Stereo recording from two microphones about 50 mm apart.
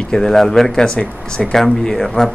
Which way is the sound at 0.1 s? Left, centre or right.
Centre.